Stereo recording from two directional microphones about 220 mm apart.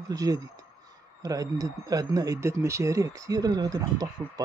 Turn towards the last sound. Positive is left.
turn(degrees=-15)  # may be behind; listen again after turning